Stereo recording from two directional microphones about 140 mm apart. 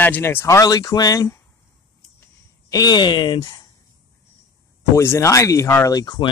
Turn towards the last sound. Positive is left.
turn(degrees=30)  # may be behind; listen again after turning